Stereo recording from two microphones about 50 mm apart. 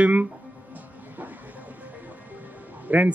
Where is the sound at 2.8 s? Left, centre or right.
Right.